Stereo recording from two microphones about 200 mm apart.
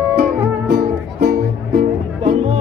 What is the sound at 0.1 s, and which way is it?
Music, 50° right (ahead or behind).